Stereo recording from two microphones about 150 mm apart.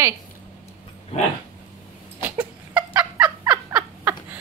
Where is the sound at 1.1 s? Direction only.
45° left (ahead or behind).